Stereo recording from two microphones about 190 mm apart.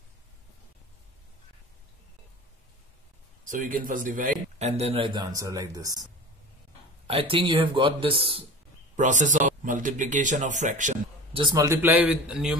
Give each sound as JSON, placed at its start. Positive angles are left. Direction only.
{"t": 3.4, "sound": "a man's voice", "side_deg": -45}
{"t": 7.1, "sound": "a man's voice", "side_deg": -30}
{"t": 8.9, "sound": "a man's voice", "side_deg": -40}
{"t": 11.3, "sound": "a man's voice", "side_deg": -20}